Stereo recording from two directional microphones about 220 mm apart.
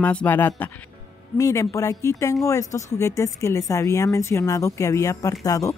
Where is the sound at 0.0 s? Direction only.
5° left (ahead or behind).